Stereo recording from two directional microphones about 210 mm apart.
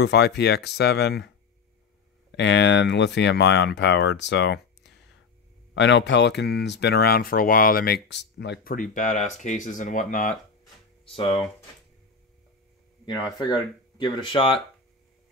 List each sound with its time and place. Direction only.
0.0 s speech: 55° left (ahead or behind)
2.3 s speech: 55° left (ahead or behind); by 10.3 s 40° left (ahead or behind)
11.1 s speech: 25° left (ahead or behind)
13.9 s speech: 20° left (ahead or behind)